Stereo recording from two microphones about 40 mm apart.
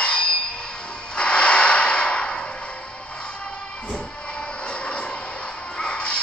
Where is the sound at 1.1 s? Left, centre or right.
Left.